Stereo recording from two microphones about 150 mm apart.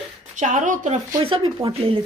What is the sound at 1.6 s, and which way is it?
Speech, 40° right (ahead or behind).